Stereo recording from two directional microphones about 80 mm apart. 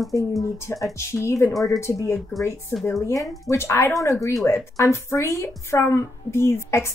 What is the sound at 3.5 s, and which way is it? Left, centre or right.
Speech, left.